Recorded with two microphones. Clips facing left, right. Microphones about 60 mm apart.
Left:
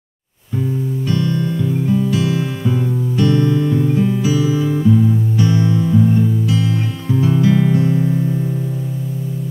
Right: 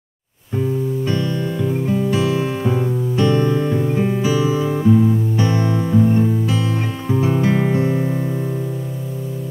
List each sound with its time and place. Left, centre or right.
1.0 s music: right